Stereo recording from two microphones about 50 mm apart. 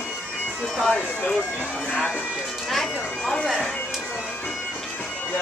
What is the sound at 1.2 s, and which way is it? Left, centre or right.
Speech, left.